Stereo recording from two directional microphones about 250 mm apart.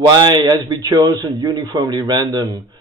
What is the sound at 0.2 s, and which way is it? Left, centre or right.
A man's voice, centre.